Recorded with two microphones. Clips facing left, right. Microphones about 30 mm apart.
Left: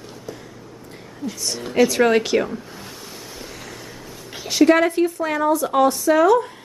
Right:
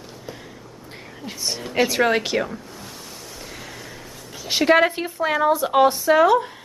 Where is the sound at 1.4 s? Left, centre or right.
Right; by 2.6 s centre.